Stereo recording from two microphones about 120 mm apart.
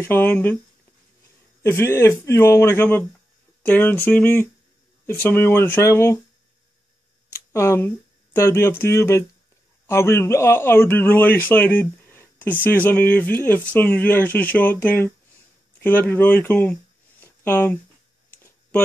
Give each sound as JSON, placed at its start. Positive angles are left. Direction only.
{"t": 0.0, "sound": "speech", "side_deg": 20}
{"t": 1.6, "sound": "a man's voice", "side_deg": 20}
{"t": 7.3, "sound": "speech", "side_deg": 25}
{"t": 17.2, "sound": "a sound", "side_deg": 15}